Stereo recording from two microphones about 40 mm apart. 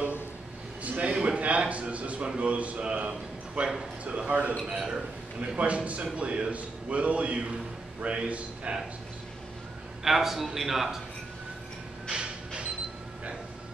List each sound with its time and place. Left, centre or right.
0.8 s a sound: right
1.1 s a sound: right
1.4 s a man's voice: right
3.6 s a man's voice: centre
4.3 s a man's voice: right
4.6 s a man's voice: centre
5.6 s a man's voice: right
10.0 s a man's voice: centre
12.1 s a sound: right